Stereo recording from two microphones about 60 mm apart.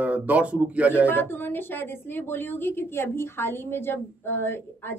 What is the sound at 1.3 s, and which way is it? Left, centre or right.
A woman's voice, left.